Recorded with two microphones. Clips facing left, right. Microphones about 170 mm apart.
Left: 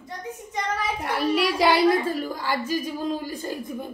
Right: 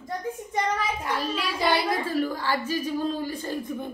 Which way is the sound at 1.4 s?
80° left.